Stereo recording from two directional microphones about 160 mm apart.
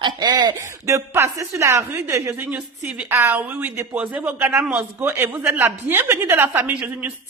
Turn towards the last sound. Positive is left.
turn(degrees=-10)  # may be behind; listen again after turning